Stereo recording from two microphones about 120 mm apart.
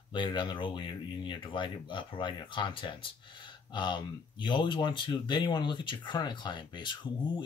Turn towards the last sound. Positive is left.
turn(degrees=40)  # may be behind; listen again after turning